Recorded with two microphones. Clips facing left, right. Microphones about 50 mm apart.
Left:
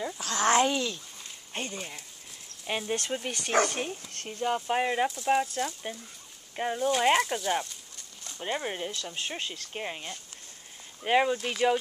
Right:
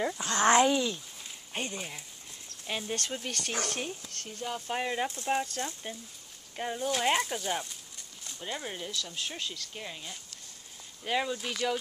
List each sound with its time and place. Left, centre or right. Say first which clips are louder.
0.2 s speech: even; right
0.6 s speech: right 1 dB; centre
2.6 s speech: left 3 dB; centre
4.1 s speech: left 7 dB; left
5.3 s speech: left 4 dB; centre
8.4 s speech: left 6 dB; left
11.3 s speech: left 4 dB; centre